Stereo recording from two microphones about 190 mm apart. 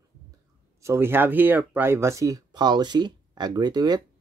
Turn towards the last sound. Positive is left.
turn(degrees=-20)  # may be behind; listen again after turning